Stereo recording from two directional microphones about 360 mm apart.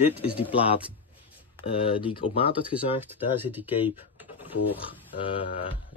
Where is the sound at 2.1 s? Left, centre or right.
Centre.